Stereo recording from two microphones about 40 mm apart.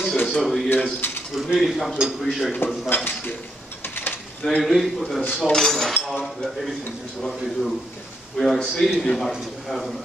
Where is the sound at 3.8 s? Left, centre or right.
Left.